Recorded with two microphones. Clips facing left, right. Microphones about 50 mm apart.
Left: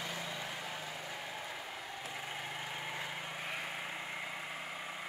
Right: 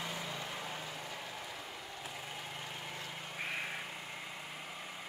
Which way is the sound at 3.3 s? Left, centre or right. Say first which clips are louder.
Right 5 dB; centre.